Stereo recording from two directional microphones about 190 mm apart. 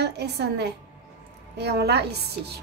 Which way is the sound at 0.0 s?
60° right (ahead or behind).